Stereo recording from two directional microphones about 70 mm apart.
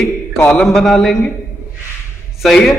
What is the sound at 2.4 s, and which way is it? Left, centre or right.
Speech, centre.